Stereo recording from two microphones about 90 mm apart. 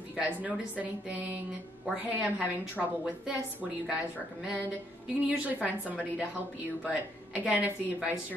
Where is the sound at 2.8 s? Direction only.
10° left (ahead or behind).